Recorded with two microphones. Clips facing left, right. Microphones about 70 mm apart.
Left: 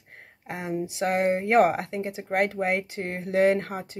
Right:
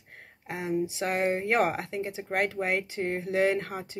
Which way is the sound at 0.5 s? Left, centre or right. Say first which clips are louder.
Right 1 dB; left.